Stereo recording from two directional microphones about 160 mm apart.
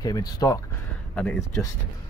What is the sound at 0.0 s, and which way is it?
Speech, 25° left (ahead or behind).